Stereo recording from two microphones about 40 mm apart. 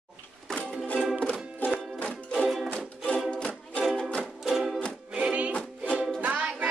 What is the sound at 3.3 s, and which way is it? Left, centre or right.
Music, left.